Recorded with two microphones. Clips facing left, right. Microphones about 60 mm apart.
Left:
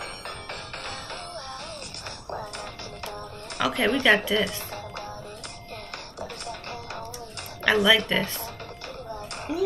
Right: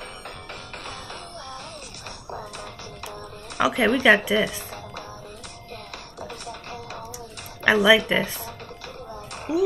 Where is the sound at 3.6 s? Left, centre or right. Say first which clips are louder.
Right 3 dB; centre.